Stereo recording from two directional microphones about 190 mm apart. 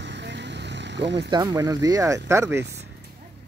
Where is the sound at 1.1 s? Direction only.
25° right (ahead or behind).